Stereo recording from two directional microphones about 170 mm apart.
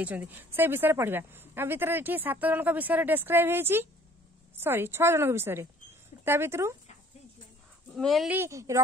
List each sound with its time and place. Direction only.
0.0 s a woman's voice: 10° right (ahead or behind)
7.9 s speech: centre (ahead or behind)
8.4 s a woman's voice: 15° right (ahead or behind)